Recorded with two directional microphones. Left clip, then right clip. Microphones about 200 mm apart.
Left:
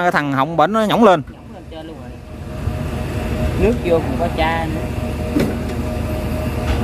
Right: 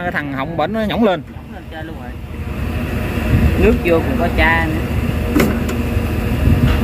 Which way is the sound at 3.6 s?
40° left (ahead or behind).